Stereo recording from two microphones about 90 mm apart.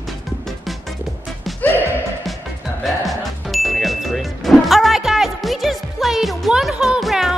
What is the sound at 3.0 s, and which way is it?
Music, centre (ahead or behind).